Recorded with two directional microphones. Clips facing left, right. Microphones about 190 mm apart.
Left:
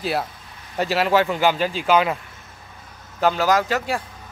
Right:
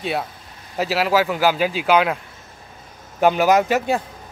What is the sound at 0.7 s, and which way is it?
Speech, centre (ahead or behind).